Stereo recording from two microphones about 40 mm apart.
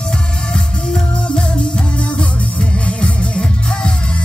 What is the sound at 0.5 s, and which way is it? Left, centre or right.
Music, centre.